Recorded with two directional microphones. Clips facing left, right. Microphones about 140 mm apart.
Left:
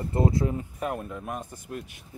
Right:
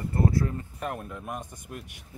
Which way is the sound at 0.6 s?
5° left (ahead or behind).